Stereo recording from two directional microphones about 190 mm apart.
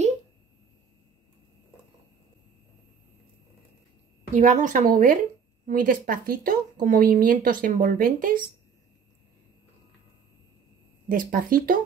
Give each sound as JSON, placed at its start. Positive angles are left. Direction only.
{"t": 4.3, "sound": "speech", "side_deg": -40}
{"t": 11.1, "sound": "speech", "side_deg": -45}